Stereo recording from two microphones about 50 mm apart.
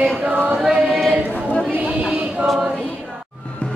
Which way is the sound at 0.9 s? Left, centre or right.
Centre.